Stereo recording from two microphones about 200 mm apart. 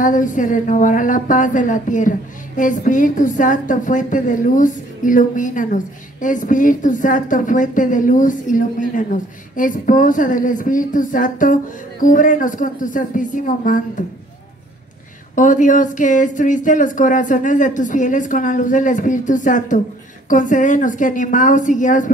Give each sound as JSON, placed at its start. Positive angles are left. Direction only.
{"t": 0.0, "sound": "a woman's voice", "side_deg": 40}
{"t": 15.3, "sound": "a woman's voice", "side_deg": 40}